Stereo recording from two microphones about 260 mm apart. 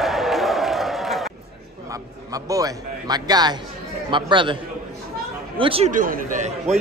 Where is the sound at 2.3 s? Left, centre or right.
Centre.